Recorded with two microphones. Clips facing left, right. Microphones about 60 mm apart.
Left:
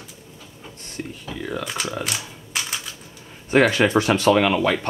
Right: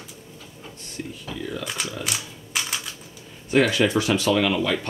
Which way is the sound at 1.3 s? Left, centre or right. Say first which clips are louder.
Left 3 dB; left.